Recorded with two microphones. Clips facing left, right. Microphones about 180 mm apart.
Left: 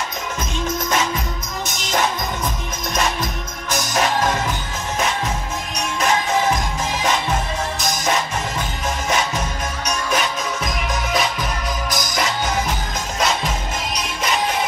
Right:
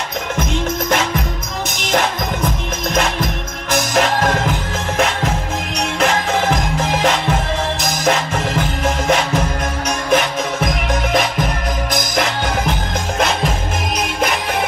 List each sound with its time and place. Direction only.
0.4 s music: 55° right (ahead or behind)
2.9 s music: 55° right (ahead or behind)
13.9 s music: 60° right (ahead or behind)